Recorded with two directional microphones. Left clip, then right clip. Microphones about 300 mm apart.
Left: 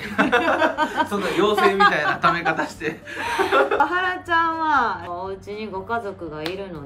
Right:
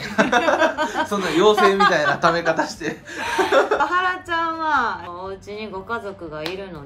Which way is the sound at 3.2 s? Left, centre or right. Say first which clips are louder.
Right 1 dB; centre.